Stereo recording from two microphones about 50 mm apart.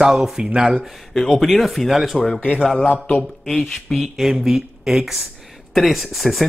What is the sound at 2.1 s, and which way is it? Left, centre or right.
Speech, centre.